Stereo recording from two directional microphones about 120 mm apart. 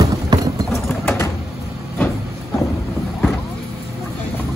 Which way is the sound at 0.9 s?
20° left (ahead or behind).